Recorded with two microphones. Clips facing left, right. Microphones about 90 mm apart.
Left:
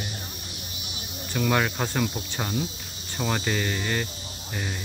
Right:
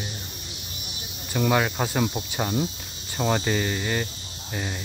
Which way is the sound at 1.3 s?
10° right (ahead or behind).